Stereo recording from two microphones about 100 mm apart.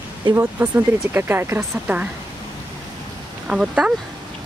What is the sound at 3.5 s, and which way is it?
Speech, 10° right (ahead or behind).